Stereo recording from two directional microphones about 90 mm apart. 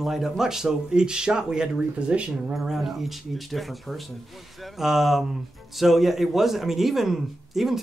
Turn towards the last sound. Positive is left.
turn(degrees=0)  # may be behind; listen again after turning